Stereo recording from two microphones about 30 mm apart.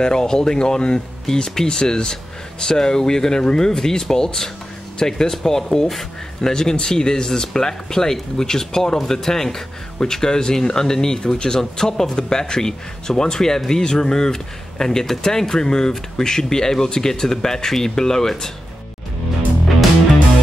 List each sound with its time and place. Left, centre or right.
0.0 s speech: left